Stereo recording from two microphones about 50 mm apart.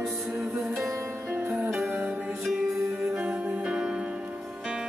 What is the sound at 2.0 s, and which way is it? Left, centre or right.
Music, right.